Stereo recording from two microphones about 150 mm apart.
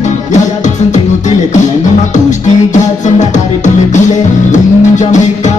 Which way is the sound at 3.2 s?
55° left (ahead or behind).